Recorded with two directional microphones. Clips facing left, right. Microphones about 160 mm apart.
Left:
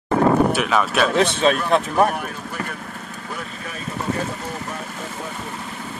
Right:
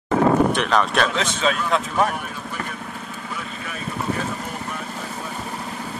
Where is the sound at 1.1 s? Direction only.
60° left (ahead or behind).